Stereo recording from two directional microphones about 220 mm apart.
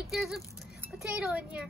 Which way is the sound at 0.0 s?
Centre (ahead or behind).